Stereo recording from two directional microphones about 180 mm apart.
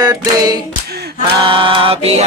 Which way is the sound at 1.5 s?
30° right (ahead or behind).